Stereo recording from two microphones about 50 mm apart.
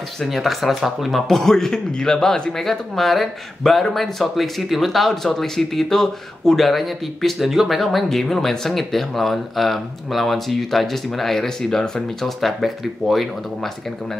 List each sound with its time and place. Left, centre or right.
0.2 s a man's voice: centre
1.3 s a man's voice: centre